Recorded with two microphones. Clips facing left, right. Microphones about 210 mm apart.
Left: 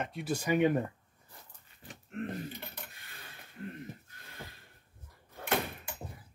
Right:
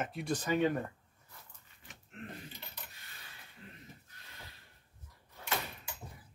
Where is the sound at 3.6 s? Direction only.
60° left (ahead or behind).